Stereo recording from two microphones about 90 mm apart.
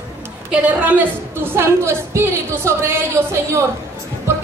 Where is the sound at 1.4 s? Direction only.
25° right (ahead or behind).